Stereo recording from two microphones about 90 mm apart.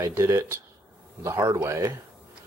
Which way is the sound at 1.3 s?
45° right (ahead or behind).